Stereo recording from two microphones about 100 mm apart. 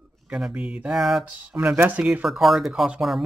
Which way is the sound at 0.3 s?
10° right (ahead or behind).